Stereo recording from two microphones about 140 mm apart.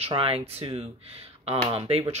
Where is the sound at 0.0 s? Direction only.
45° right (ahead or behind).